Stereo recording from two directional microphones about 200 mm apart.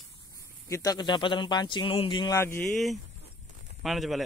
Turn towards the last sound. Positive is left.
turn(degrees=0)  # may be behind; listen again after turning